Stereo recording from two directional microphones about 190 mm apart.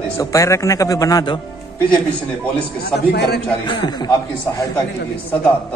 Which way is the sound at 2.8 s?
60° left (ahead or behind).